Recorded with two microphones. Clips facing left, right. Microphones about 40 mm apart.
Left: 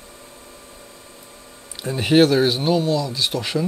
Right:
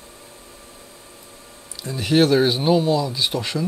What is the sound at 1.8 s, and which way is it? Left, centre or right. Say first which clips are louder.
Speech: left 3 dB; left.